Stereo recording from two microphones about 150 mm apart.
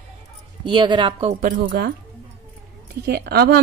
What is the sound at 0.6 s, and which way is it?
Speech, 30° right (ahead or behind).